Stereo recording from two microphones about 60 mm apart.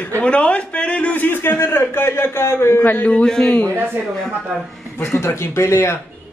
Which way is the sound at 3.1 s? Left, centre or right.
Centre.